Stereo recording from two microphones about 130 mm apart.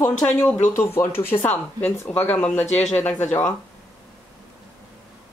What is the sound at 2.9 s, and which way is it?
Speech, 15° left (ahead or behind).